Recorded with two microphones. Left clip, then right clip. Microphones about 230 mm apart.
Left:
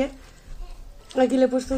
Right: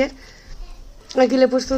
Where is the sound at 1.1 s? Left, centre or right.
Right.